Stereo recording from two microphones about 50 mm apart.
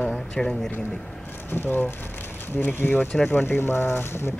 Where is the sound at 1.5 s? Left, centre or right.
Left.